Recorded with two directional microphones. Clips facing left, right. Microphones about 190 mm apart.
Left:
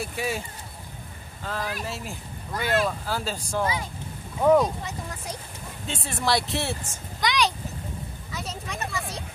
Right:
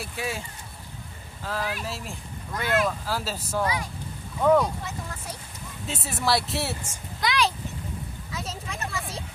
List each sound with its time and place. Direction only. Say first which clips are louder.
0.0 s speech: left 3 dB; centre (ahead or behind)
1.4 s speech: right 1 dB; 5° right (ahead or behind)
3.6 s speech: even; 25° left (ahead or behind)
5.9 s speech: even; 5° right (ahead or behind)